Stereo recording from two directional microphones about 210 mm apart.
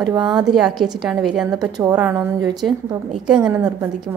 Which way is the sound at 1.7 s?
15° right (ahead or behind).